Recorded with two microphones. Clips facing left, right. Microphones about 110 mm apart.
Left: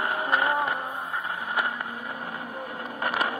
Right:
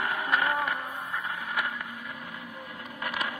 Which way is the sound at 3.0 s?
40° left (ahead or behind).